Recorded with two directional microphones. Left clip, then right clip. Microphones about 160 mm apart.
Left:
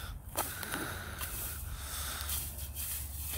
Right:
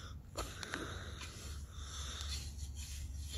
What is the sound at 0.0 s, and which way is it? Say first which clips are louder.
Whip: left 7 dB; 35° left (ahead or behind).